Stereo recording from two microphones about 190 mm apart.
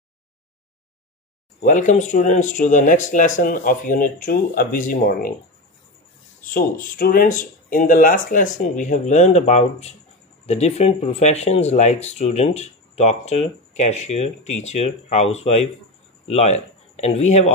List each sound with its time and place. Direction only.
1.6 s speech: 40° left (ahead or behind)
6.4 s speech: 45° left (ahead or behind)